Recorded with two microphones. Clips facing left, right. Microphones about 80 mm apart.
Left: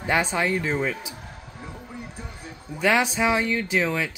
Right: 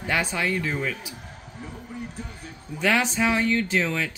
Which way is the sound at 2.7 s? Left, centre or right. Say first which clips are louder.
Left 2 dB; centre.